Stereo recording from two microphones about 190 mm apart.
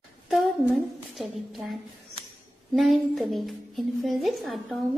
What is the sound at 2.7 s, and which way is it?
A child's voice, centre (ahead or behind).